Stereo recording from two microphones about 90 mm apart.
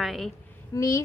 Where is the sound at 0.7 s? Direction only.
35° left (ahead or behind).